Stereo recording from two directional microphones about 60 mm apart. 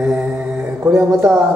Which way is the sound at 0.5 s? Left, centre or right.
Right.